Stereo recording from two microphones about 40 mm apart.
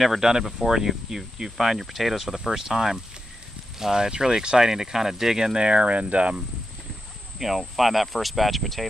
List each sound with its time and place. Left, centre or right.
0.0 s speech: centre; by 6.4 s right
7.3 s speech: centre